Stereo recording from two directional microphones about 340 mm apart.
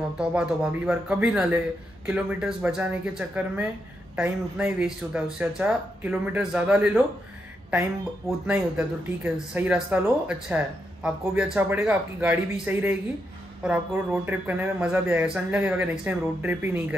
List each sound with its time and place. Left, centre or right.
0.2 s speech: centre
8.3 s speech: centre